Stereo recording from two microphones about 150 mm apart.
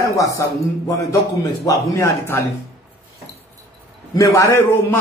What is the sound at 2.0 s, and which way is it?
Speech, 20° left (ahead or behind).